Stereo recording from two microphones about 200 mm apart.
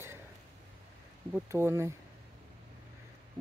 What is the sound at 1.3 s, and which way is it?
Speech, 15° right (ahead or behind).